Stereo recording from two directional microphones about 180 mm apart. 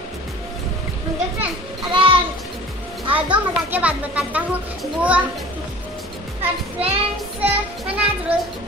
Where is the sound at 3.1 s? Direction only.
10° right (ahead or behind).